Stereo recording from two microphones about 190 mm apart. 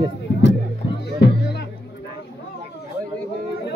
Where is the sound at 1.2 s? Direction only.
60° left (ahead or behind).